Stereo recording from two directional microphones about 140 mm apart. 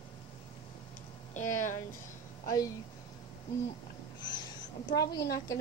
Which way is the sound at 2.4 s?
25° left (ahead or behind).